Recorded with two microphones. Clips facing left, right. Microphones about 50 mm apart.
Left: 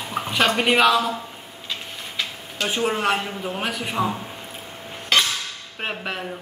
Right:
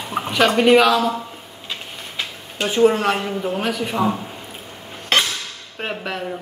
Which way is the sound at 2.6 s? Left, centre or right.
Right.